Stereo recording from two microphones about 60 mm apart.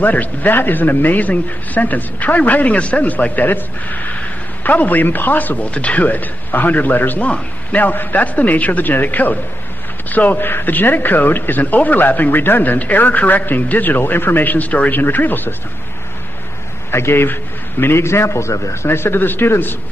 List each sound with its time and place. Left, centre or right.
0.0 s a man's voice: left
16.9 s a man's voice: left